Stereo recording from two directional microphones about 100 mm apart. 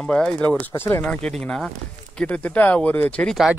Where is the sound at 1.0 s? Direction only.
10° left (ahead or behind).